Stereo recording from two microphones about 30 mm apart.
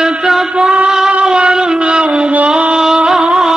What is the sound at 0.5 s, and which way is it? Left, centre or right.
Music, right.